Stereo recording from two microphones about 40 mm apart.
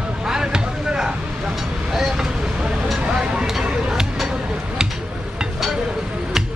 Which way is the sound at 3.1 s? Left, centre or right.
Centre.